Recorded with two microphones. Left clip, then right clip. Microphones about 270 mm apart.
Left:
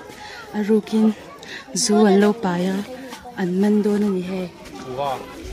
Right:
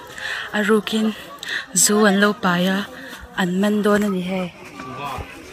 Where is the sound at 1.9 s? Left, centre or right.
Centre.